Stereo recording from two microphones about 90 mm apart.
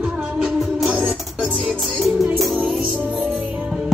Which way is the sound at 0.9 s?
15° right (ahead or behind).